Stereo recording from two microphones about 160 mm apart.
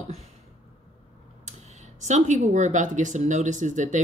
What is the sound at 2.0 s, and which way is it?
Speech, 50° right (ahead or behind).